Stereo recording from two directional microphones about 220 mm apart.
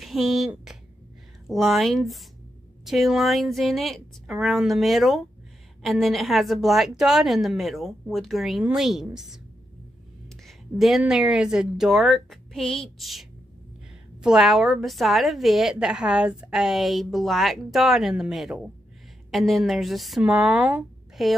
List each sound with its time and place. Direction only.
0.0 s a woman's voice: centre (ahead or behind)
10.4 s a woman's voice: centre (ahead or behind)